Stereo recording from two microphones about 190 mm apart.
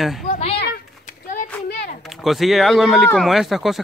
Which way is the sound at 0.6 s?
50° left (ahead or behind).